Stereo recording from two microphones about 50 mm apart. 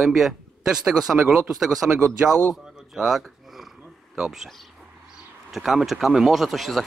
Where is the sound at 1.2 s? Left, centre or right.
Right.